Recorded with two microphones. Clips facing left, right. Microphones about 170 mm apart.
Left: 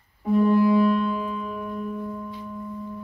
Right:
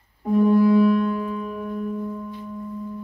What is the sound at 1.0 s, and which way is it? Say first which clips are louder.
Music: right 2 dB; 50° right (ahead or behind).